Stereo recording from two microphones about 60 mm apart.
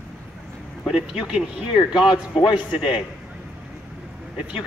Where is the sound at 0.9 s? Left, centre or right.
Centre.